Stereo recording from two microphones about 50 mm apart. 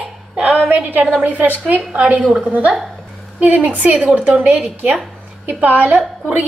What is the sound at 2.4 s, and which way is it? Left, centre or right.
A woman's voice, right.